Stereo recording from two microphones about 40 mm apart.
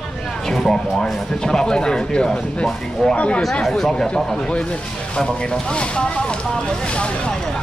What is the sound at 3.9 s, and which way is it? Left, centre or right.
Speech, centre.